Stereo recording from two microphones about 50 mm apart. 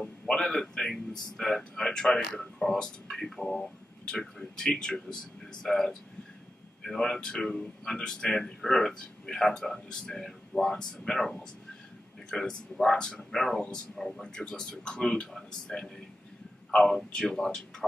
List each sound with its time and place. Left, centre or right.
0.0 s a sound: centre
1.6 s a man's voice: centre
12.3 s a man's voice: centre